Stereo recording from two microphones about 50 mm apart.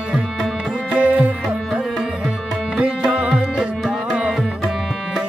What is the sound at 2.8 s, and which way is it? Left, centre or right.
Music, right.